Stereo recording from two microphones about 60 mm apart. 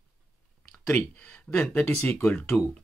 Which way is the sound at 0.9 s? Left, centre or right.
Left.